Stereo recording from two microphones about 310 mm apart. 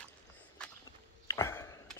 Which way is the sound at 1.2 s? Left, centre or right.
Centre.